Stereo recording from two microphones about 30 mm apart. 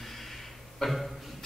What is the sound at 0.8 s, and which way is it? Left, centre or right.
Speech, centre.